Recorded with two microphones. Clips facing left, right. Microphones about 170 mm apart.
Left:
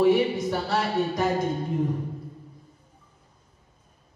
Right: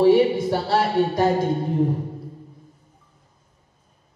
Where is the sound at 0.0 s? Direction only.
30° right (ahead or behind).